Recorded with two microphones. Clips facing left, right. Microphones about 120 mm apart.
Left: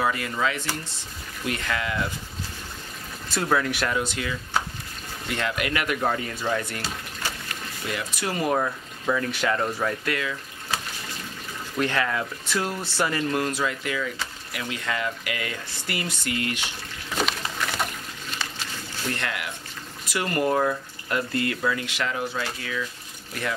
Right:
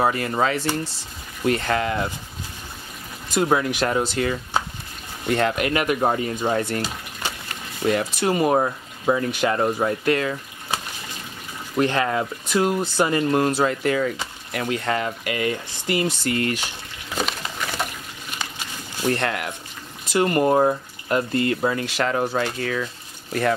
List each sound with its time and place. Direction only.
0.0 s speech: 40° right (ahead or behind)
3.3 s speech: 20° right (ahead or behind)
3.9 s speech: 35° right (ahead or behind)
7.8 s speech: 45° right (ahead or behind)
8.1 s speech: 25° right (ahead or behind)
11.7 s speech: 30° right (ahead or behind)
16.3 s speech: 40° right (ahead or behind)
17.1 s a sound: centre (ahead or behind)
19.0 s speech: 40° right (ahead or behind)
20.1 s speech: 25° right (ahead or behind); by 22.8 s 50° right (ahead or behind)